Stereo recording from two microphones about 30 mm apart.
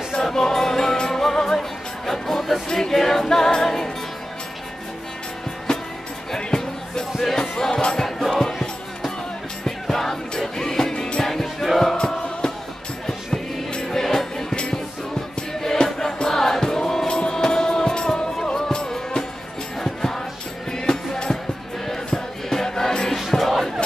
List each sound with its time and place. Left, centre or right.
0.1 s music: centre
5.7 s music: left
8.2 s music: centre
9.7 s music: centre
10.9 s music: left
11.2 s music: centre
13.0 s music: left
15.6 s music: centre
19.8 s music: centre
23.1 s crowd: centre